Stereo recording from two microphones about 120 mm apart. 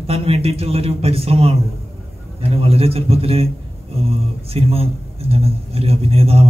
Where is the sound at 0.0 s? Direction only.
55° right (ahead or behind).